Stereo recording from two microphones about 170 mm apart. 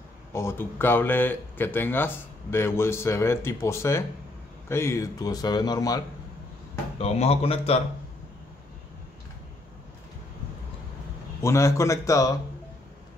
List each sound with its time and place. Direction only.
0.3 s a man's voice: 15° left (ahead or behind)
7.0 s speech: 35° left (ahead or behind)
11.4 s speech: 15° left (ahead or behind)